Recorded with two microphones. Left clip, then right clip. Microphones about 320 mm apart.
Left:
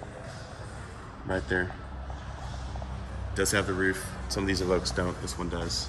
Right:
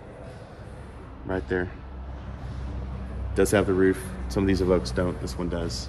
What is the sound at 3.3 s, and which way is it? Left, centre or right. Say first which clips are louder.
Speech: right 6 dB; centre.